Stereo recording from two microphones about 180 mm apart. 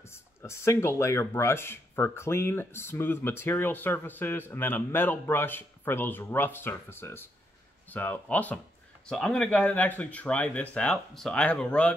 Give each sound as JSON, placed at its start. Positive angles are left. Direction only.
{"t": 0.0, "sound": "speech", "side_deg": 15}